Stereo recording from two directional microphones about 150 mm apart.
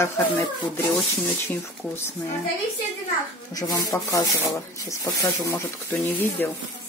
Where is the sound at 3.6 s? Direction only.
25° left (ahead or behind).